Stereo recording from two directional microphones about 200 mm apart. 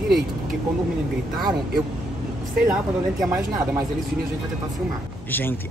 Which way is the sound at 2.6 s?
5° right (ahead or behind).